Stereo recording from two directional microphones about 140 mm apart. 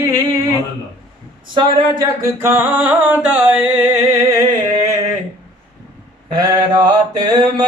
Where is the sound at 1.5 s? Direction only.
35° right (ahead or behind).